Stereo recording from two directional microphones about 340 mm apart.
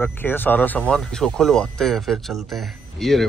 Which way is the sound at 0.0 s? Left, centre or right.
Centre.